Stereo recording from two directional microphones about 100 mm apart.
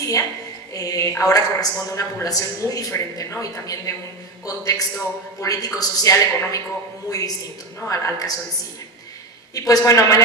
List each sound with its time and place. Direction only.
0.7 s a man's voice: 35° left (ahead or behind)
9.5 s a man's voice: 35° left (ahead or behind)